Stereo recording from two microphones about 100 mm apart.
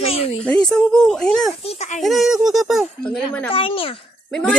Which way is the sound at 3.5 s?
65° left (ahead or behind).